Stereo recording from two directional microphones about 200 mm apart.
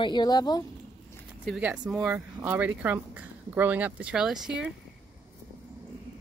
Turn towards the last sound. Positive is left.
turn(degrees=-5)  # may be behind; listen again after turning